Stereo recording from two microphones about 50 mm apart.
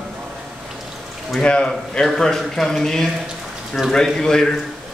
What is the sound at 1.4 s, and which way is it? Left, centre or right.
Speech, left.